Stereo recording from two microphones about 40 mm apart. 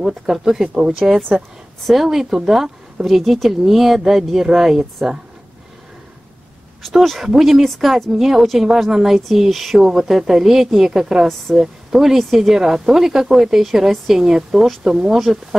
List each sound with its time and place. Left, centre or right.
0.0 s speech: centre
1.0 s speech: centre
6.9 s speech: centre